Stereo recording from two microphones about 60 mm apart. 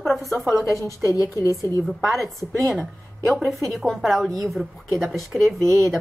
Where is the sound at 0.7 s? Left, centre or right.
Left.